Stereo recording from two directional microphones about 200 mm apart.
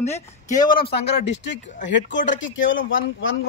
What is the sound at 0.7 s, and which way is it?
Speech, 50° left (ahead or behind).